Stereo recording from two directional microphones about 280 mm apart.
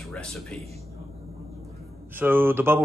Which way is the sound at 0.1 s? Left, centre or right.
Centre.